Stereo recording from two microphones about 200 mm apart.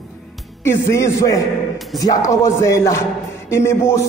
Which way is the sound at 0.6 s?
15° left (ahead or behind).